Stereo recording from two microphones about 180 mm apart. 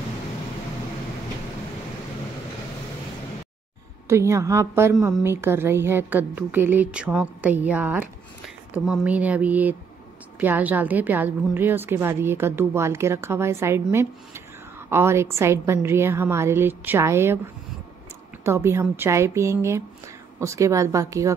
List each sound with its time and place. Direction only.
4.1 s a woman's voice: 15° right (ahead or behind)
18.4 s a woman's voice: 15° right (ahead or behind)